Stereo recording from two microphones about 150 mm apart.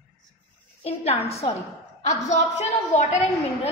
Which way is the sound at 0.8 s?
45° left (ahead or behind).